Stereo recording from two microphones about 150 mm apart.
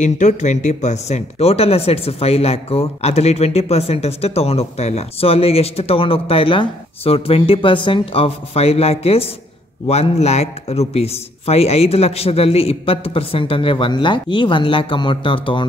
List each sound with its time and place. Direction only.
0.0 s a man's voice: 55° left (ahead or behind); by 15.6 s 35° left (ahead or behind)